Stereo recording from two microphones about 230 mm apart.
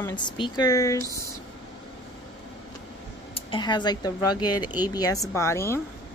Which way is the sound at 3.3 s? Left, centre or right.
Left.